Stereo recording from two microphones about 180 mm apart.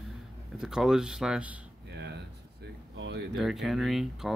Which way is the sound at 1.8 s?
65° right (ahead or behind).